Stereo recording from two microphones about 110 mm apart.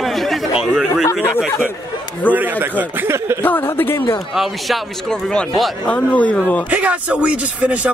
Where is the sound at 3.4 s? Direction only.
15° left (ahead or behind).